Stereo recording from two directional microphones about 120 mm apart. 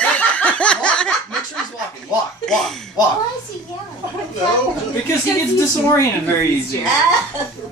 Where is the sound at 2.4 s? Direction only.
5° left (ahead or behind).